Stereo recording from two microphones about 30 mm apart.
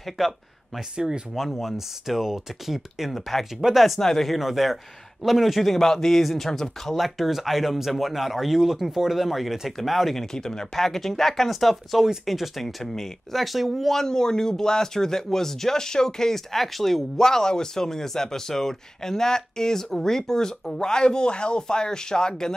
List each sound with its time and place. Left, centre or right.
0.2 s speech: centre
0.9 s speech: right
1.3 s speech: centre
4.0 s speech: centre
4.3 s speech: centre
6.9 s speech: centre
10.1 s speech: centre
10.7 s speech: centre
14.0 s speech: left
16.3 s speech: centre
17.2 s speech: centre